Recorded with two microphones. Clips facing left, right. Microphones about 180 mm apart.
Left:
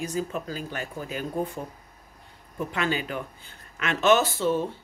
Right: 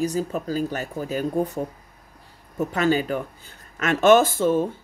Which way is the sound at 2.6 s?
40° right (ahead or behind).